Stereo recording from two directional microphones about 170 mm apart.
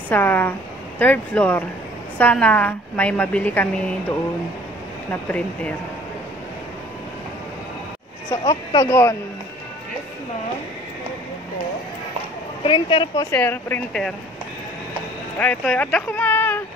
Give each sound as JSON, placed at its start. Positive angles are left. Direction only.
{"t": 0.1, "sound": "a woman's voice", "side_deg": 10}
{"t": 5.3, "sound": "a woman's voice", "side_deg": 10}
{"t": 8.3, "sound": "speech", "side_deg": 25}
{"t": 12.6, "sound": "speech", "side_deg": 30}
{"t": 13.3, "sound": "a woman's voice", "side_deg": 10}
{"t": 15.3, "sound": "a woman's voice", "side_deg": 5}